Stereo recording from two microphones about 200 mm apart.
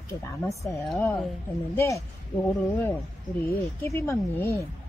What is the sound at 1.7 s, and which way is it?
Speech, 15° left (ahead or behind).